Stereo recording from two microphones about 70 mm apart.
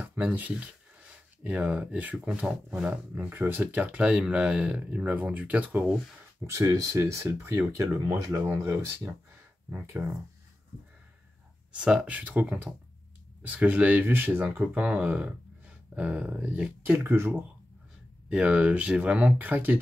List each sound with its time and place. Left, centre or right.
0.0 s speech: right
2.9 s speech: right
6.4 s speech: right
9.7 s speech: right
11.7 s speech: centre
14.6 s speech: centre
16.8 s speech: right
18.3 s speech: centre